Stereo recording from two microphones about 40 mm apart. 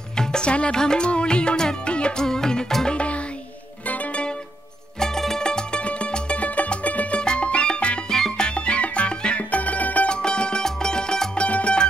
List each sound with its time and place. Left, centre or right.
0.2 s music: left
2.2 s music: centre
5.0 s music: centre
5.5 s music: left
7.2 s music: left
8.1 s music: centre
8.5 s music: left
10.0 s music: left
11.4 s music: left